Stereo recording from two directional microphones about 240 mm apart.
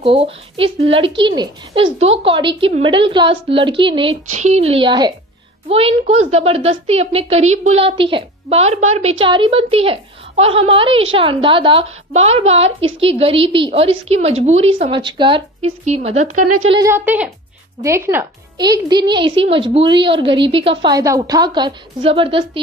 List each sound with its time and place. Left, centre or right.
0.0 s a woman's voice: right
16.3 s speech: right
16.7 s a woman's voice: centre